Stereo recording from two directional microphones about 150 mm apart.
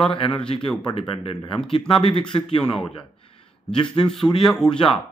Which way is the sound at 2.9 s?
40° left (ahead or behind).